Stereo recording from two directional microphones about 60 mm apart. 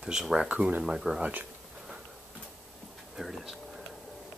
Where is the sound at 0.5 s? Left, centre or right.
Right.